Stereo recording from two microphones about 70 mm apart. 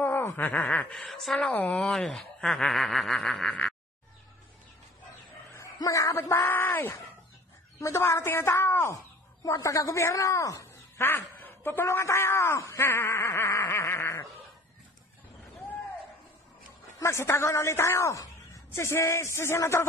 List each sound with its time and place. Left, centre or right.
0.0 s a sound: left
0.9 s speech: centre
1.5 s speech: left
2.0 s speech: centre
5.8 s speech: left
8.9 s speech: left
11.0 s speech: left
17.0 s speech: left